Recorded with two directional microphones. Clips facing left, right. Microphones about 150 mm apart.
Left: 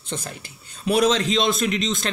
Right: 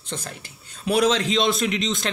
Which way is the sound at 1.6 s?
15° right (ahead or behind).